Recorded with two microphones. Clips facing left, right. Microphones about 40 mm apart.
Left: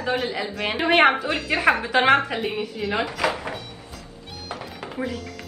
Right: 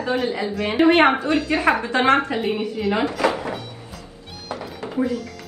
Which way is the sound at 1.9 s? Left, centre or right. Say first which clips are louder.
Left 1 dB; centre.